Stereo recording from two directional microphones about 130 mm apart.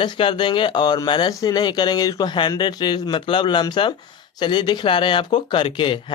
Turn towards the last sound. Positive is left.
turn(degrees=40)  # may be behind; listen again after turning